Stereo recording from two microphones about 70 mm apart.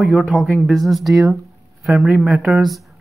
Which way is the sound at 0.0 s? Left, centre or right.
Centre.